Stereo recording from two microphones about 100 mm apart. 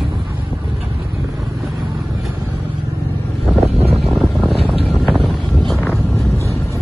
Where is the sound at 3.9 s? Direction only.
Centre (ahead or behind).